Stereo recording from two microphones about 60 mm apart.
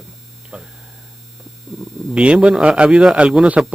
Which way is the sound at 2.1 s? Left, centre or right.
Centre.